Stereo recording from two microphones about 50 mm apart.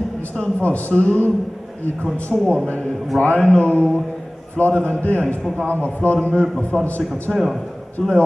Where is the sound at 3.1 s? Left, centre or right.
Left.